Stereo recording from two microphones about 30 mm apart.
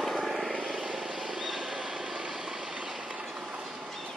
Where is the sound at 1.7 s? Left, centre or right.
Centre.